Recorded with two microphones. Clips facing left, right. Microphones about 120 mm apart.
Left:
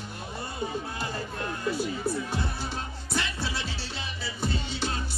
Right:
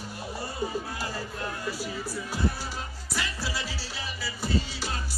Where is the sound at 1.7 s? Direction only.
25° left (ahead or behind).